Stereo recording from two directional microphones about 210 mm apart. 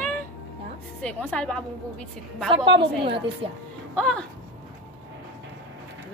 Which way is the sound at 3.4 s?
25° right (ahead or behind).